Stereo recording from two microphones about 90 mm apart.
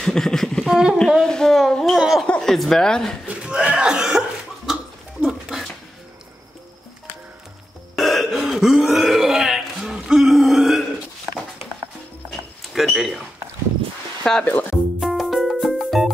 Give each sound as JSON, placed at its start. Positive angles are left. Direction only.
{"t": 0.0, "sound": "a sound", "side_deg": 5}
{"t": 0.7, "sound": "speech", "side_deg": -5}
{"t": 0.9, "sound": "a child's voice", "side_deg": 5}
{"t": 2.2, "sound": "speech", "side_deg": 10}
{"t": 3.3, "sound": "cough", "side_deg": -10}
{"t": 5.2, "sound": "a sound", "side_deg": 0}
{"t": 7.9, "sound": "burping", "side_deg": 0}
{"t": 12.3, "sound": "a sound", "side_deg": 0}
{"t": 14.4, "sound": "music", "side_deg": 20}
{"t": 15.0, "sound": "music", "side_deg": 0}